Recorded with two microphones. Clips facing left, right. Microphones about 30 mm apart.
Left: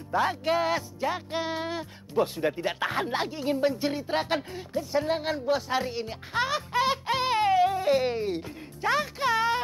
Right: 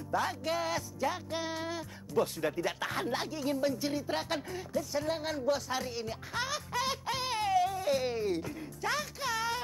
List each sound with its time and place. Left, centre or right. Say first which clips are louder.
0.1 s speech: left 7 dB; left